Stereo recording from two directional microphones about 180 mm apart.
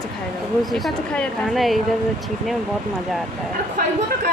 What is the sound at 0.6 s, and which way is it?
Speech, centre (ahead or behind).